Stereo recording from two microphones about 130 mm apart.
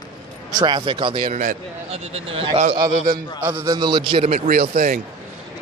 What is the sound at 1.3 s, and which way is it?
Speech, 75° right (ahead or behind).